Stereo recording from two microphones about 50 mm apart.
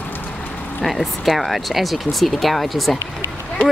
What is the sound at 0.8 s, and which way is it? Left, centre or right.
Speech, centre.